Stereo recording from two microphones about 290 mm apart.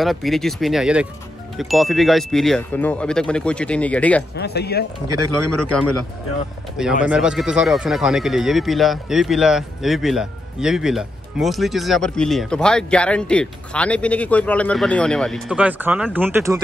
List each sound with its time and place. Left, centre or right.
0.0 s speech: centre
4.4 s speech: left
5.0 s speech: right
7.1 s speech: centre